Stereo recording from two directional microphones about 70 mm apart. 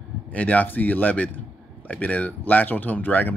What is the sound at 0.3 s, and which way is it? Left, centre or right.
Speech, left.